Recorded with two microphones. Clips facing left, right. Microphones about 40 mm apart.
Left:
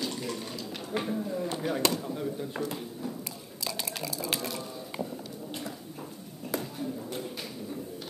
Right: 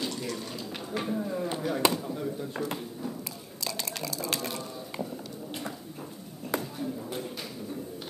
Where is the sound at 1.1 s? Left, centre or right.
Right.